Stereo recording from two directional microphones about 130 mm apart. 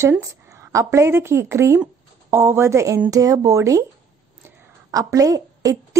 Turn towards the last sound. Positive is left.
turn(degrees=-25)  # may be behind; listen again after turning